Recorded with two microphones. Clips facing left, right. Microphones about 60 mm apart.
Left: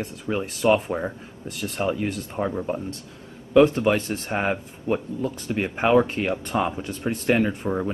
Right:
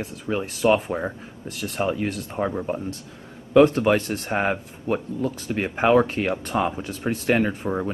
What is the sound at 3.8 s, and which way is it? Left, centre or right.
Speech, centre.